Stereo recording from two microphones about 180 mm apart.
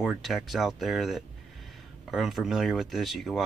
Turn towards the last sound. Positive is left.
turn(degrees=0)  # may be behind; listen again after turning